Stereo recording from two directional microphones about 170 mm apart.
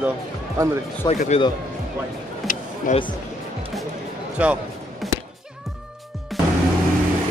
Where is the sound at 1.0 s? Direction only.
40° left (ahead or behind).